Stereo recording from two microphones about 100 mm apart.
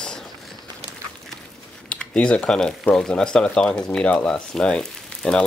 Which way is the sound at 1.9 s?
10° left (ahead or behind).